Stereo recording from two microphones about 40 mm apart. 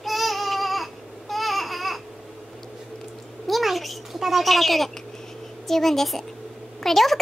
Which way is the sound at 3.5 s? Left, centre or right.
Centre.